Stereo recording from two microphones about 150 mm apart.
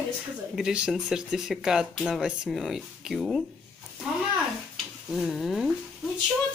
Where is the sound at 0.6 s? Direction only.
5° right (ahead or behind).